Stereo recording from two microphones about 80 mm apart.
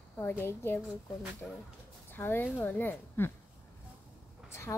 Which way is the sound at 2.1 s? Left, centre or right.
Left.